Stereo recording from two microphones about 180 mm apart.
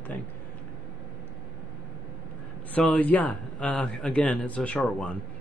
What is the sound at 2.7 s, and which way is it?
A man's voice, 10° left (ahead or behind).